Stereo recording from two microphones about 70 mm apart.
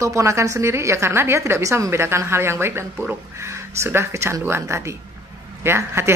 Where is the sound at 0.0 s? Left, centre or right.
Right.